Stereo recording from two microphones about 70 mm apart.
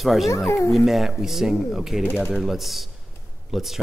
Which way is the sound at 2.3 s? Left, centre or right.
Centre.